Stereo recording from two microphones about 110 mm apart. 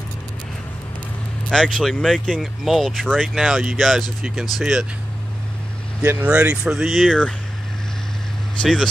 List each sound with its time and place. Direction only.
1.5 s speech: 5° left (ahead or behind)
6.0 s speech: 15° right (ahead or behind); by 7.3 s 5° left (ahead or behind)